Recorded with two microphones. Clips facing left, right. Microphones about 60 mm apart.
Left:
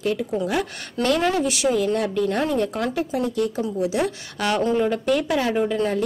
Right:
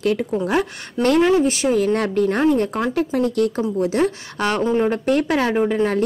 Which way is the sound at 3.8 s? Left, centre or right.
Right.